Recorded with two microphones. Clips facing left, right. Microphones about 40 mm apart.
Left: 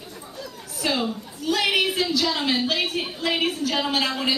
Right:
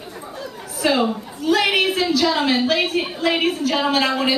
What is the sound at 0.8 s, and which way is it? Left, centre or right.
Chatter, centre.